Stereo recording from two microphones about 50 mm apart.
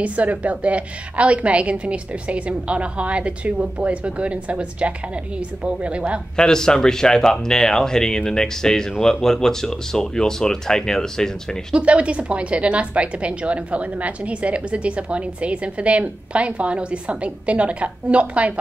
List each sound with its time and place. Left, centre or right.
0.0 s a woman's voice: right
6.3 s speech: centre
11.7 s a woman's voice: right